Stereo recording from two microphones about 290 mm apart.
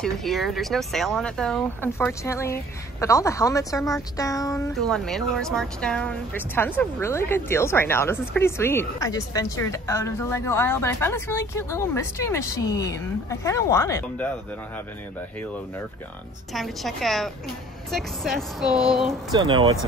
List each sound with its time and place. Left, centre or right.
0.0 s speech: centre
16.5 s speech: centre
19.3 s speech: centre